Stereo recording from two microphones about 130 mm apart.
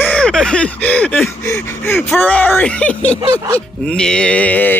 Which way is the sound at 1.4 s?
20° left (ahead or behind).